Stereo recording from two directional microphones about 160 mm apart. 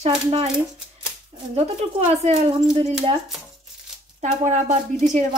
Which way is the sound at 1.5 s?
40° right (ahead or behind).